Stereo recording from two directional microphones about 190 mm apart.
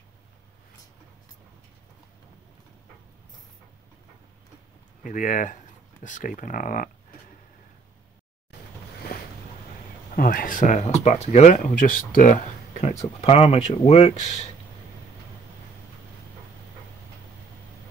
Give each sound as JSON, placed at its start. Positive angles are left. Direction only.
{"t": 5.0, "sound": "speech", "side_deg": 45}
{"t": 10.1, "sound": "speech", "side_deg": 45}